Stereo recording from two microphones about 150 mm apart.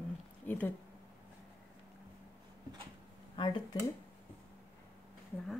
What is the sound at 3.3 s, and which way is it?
Speech, 35° left (ahead or behind).